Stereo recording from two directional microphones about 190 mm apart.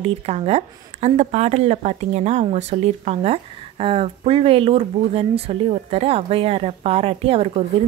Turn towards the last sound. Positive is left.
turn(degrees=-30)  # may be behind; listen again after turning